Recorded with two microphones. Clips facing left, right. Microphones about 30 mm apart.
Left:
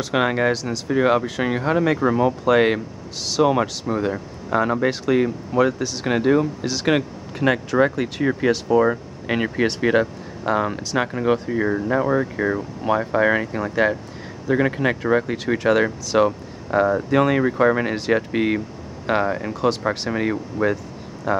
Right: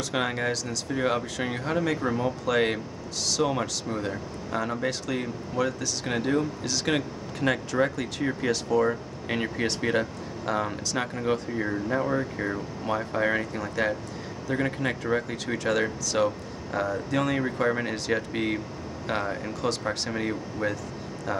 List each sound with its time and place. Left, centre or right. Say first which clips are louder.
0.0 s speech: left 8 dB; centre